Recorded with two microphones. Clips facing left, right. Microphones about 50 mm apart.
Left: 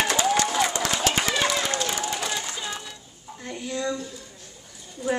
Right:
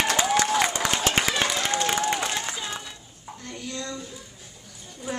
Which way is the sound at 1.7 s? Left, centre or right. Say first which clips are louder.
Right 3 dB; right.